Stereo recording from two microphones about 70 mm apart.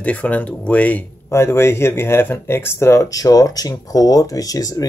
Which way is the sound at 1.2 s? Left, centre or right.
Left.